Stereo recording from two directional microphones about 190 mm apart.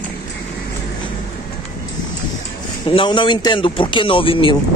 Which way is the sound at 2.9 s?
25° left (ahead or behind).